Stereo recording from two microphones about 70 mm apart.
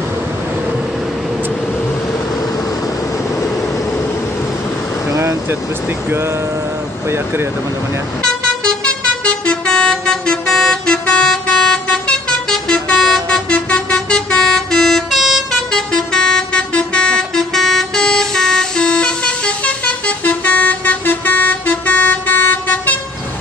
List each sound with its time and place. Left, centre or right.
5.1 s a sound: right
8.2 s vehicle: centre
15.7 s vehicle: centre